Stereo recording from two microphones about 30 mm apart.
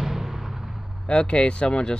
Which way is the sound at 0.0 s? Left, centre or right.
Centre.